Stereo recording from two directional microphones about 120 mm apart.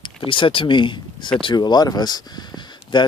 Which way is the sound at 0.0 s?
45° left (ahead or behind).